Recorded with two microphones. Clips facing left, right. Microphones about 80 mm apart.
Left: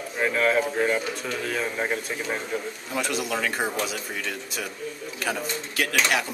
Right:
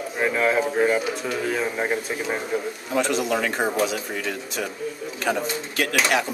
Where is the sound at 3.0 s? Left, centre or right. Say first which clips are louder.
Right 5 dB; centre.